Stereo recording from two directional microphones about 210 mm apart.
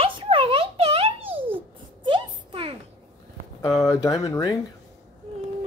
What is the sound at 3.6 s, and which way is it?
Speech, 15° left (ahead or behind).